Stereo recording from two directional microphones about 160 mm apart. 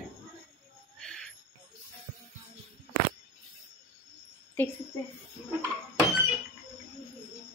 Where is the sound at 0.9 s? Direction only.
5° left (ahead or behind).